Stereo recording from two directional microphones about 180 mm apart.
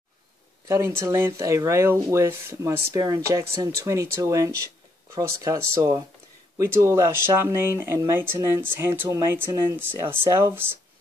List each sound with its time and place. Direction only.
0.7 s speech: 15° right (ahead or behind)